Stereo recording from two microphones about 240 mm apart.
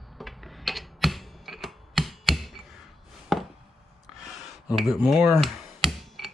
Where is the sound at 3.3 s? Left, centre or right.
Centre.